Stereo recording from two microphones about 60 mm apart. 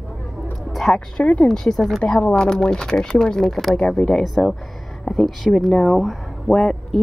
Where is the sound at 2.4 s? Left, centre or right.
Centre.